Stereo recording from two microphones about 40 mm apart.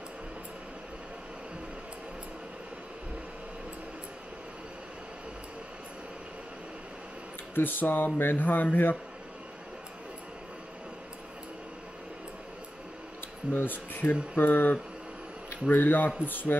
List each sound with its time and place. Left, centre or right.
7.5 s speech: left
13.5 s speech: left